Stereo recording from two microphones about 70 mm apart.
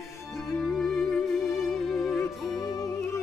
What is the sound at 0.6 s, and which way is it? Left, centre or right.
Music, centre.